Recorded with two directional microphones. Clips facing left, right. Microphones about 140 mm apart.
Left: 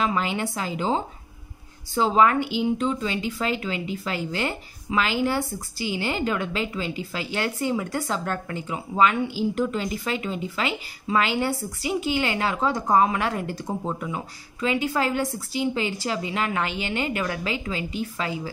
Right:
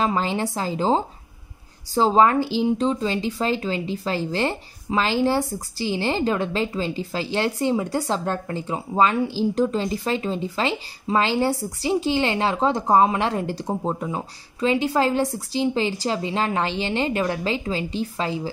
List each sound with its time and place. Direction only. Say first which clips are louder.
0.0 s speech: right 2 dB; 35° right (ahead or behind)